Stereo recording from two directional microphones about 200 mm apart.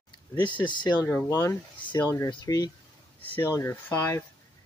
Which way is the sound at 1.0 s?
10° left (ahead or behind).